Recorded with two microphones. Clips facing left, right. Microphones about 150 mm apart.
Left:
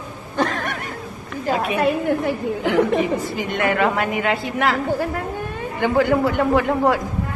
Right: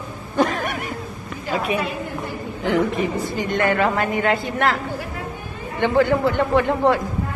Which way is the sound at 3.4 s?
5° left (ahead or behind).